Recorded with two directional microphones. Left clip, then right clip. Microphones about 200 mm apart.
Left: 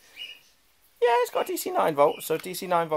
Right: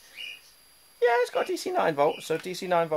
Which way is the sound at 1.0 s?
5° left (ahead or behind).